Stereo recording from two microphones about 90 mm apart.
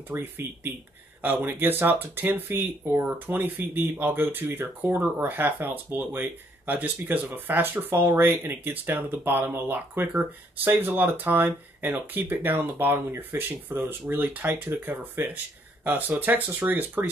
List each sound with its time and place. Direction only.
0.1 s speech: 25° right (ahead or behind)